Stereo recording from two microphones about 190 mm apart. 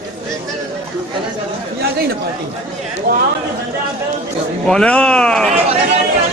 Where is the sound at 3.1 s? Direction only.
50° right (ahead or behind).